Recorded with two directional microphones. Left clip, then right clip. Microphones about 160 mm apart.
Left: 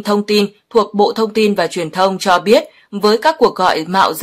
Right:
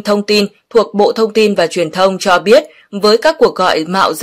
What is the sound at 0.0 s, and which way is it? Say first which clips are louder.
Speech: right 2 dB; 20° right (ahead or behind).